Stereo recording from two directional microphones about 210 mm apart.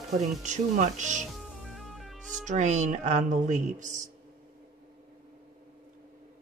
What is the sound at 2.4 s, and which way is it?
Speech, 35° right (ahead or behind).